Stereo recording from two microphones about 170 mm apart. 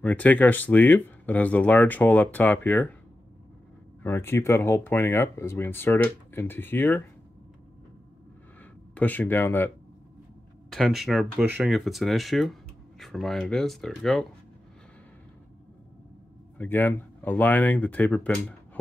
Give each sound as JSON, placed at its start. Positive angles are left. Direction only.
{"t": 0.0, "sound": "speech", "side_deg": 10}
{"t": 4.0, "sound": "speech", "side_deg": 15}
{"t": 8.9, "sound": "speech", "side_deg": 10}
{"t": 10.7, "sound": "speech", "side_deg": 0}
{"t": 16.5, "sound": "speech", "side_deg": 10}